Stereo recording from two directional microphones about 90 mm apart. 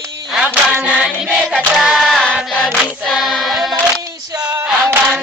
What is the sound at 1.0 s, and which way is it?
Choir, centre (ahead or behind).